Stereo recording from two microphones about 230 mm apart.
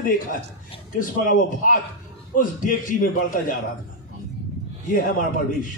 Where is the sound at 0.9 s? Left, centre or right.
Left.